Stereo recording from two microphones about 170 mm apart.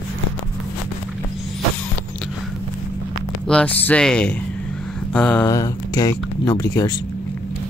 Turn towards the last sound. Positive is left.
turn(degrees=20)  # may be behind; listen again after turning